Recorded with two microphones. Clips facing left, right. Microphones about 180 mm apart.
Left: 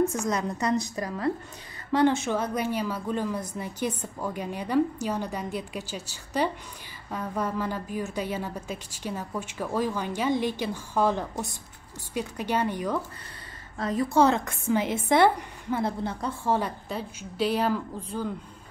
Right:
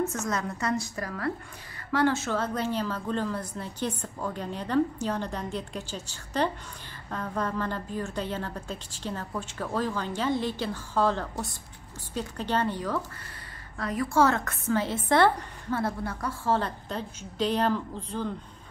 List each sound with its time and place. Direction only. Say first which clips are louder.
0.0 s a woman's voice: left 4 dB; 15° left (ahead or behind)